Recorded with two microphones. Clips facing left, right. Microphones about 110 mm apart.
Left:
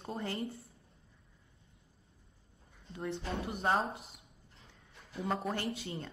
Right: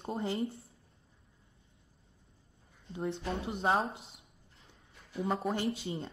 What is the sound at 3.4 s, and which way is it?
Speech, 25° right (ahead or behind).